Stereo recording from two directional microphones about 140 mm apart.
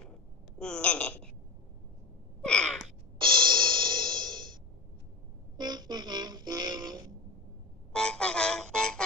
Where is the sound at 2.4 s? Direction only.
5° left (ahead or behind).